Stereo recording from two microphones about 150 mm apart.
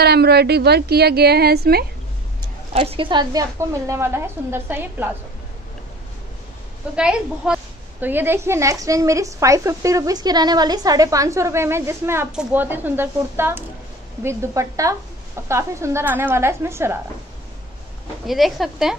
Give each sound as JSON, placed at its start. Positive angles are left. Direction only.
{"t": 0.0, "sound": "a woman's voice", "side_deg": -90}
{"t": 2.7, "sound": "a woman's voice", "side_deg": -40}
{"t": 7.0, "sound": "a woman's voice", "side_deg": -5}
{"t": 18.2, "sound": "speech", "side_deg": 0}